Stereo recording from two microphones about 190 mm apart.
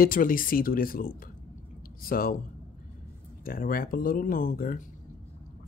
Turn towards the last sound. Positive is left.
turn(degrees=50)  # may be behind; listen again after turning